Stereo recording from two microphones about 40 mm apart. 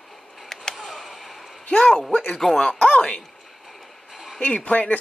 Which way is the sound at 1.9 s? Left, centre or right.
Centre.